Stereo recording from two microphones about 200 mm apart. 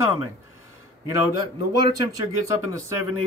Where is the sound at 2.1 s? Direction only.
15° right (ahead or behind).